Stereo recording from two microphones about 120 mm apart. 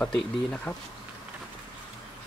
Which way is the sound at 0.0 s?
10° left (ahead or behind).